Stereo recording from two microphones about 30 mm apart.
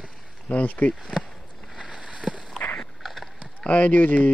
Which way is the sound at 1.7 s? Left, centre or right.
Right.